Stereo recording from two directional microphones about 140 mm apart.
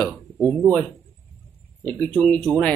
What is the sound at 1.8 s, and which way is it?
Speech, 10° left (ahead or behind).